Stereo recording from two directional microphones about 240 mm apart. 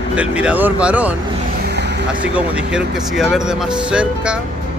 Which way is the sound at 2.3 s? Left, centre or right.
Centre.